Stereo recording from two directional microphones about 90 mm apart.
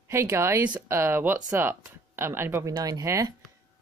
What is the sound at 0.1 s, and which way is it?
Speech, 30° right (ahead or behind).